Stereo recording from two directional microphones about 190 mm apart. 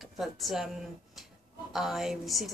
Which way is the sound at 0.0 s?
Centre (ahead or behind).